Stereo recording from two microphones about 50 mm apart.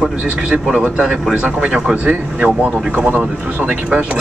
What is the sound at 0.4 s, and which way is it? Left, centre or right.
Speech, centre.